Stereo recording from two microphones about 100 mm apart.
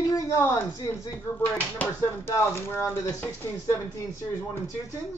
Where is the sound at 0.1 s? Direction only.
40° left (ahead or behind).